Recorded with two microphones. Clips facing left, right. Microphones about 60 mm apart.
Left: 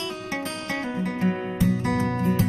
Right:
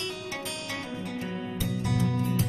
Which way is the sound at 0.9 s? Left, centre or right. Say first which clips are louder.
Left 8 dB; left.